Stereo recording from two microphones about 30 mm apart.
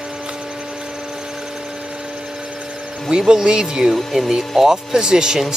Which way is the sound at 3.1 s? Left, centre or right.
Right.